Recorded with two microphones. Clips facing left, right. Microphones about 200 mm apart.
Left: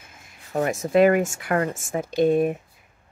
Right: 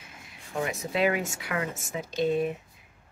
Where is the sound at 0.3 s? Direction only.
50° left (ahead or behind).